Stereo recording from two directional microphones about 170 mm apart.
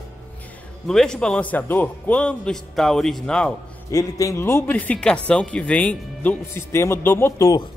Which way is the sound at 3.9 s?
20° left (ahead or behind).